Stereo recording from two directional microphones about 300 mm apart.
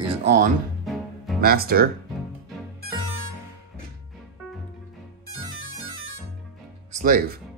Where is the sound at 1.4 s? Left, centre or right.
Right.